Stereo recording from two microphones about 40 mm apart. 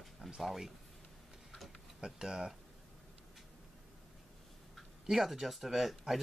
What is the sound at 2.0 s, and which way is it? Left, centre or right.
Speech, centre.